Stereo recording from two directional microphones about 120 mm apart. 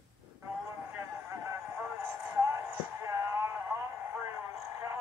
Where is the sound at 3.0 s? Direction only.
25° right (ahead or behind).